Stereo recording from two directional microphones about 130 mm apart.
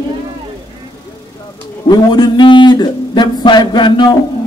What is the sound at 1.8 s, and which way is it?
A man's voice, 35° left (ahead or behind).